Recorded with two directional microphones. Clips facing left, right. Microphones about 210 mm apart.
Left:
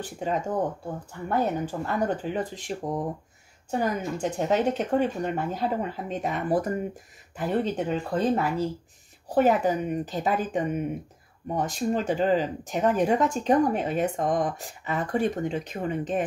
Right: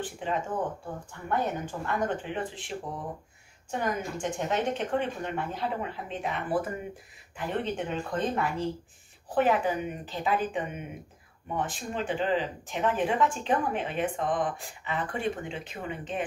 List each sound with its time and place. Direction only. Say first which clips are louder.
0.0 s speech: left 3 dB; 40° left (ahead or behind)